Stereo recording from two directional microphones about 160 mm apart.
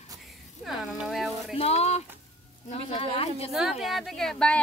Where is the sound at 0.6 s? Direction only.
Centre (ahead or behind).